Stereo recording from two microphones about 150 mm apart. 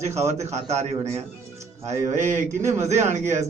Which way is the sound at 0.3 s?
50° right (ahead or behind).